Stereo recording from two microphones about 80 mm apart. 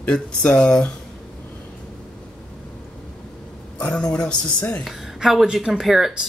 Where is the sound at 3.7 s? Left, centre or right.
Centre.